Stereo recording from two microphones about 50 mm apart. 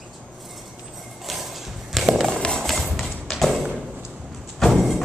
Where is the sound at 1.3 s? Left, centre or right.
Centre.